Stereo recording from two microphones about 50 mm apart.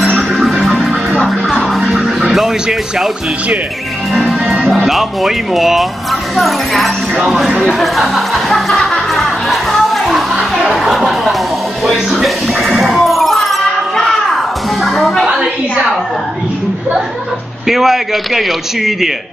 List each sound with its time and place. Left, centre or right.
0.4 s music: centre
1.8 s music: centre
4.1 s music: centre
4.8 s speech: centre
7.6 s music: centre
13.7 s a sound: centre
14.8 s music: centre
15.2 s a sound: centre
17.6 s speech: centre